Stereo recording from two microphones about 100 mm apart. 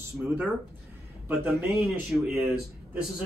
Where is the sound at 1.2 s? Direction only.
20° right (ahead or behind).